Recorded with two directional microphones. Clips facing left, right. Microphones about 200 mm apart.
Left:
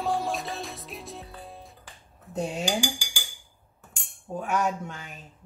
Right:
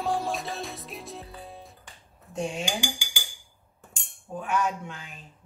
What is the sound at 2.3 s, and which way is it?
Speech, 40° left (ahead or behind).